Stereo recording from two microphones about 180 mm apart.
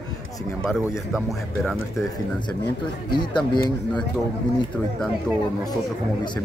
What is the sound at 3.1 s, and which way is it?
Speech, 25° left (ahead or behind).